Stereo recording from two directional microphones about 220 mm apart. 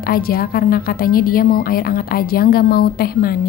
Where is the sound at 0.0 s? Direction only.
45° left (ahead or behind).